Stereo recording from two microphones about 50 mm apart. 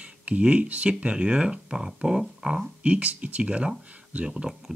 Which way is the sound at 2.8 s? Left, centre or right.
Right.